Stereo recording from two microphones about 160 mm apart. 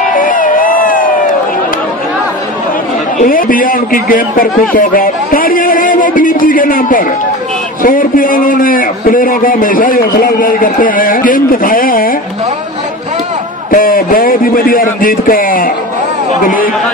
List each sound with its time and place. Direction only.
0.1 s a sound: 60° left (ahead or behind)
3.2 s a man's voice: 60° left (ahead or behind)
13.7 s a man's voice: 60° left (ahead or behind)